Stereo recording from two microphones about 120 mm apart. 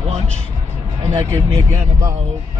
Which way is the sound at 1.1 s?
25° right (ahead or behind).